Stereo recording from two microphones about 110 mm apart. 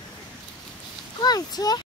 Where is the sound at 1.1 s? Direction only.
40° left (ahead or behind).